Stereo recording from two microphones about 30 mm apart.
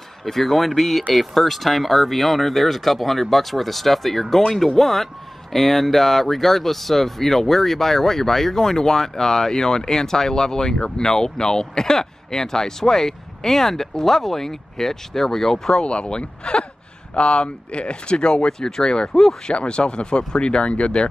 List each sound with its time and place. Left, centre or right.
0.2 s speech: centre
15.8 s speech: left
18.1 s speech: left
19.4 s speech: left